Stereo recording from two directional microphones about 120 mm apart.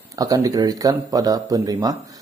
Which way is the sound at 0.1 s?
30° right (ahead or behind).